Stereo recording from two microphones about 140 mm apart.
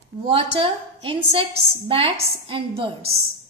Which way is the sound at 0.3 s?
40° right (ahead or behind).